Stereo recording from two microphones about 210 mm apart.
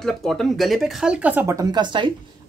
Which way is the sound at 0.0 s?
Centre (ahead or behind).